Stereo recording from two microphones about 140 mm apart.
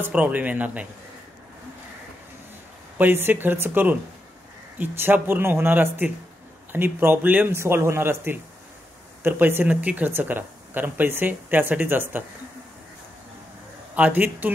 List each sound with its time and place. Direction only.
0.0 s speech: 10° right (ahead or behind)
3.0 s speech: 15° right (ahead or behind)
13.9 s speech: 10° right (ahead or behind)